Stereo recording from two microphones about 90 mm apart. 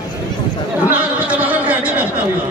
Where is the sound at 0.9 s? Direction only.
20° right (ahead or behind).